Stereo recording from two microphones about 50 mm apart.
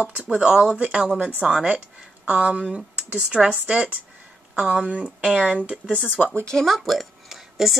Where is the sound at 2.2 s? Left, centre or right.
Right.